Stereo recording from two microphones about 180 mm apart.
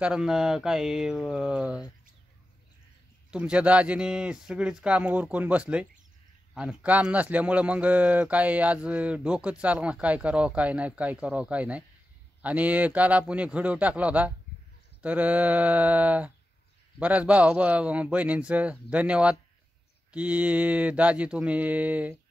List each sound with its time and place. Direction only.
0.0 s speech: 5° right (ahead or behind)
3.3 s speech: 5° right (ahead or behind)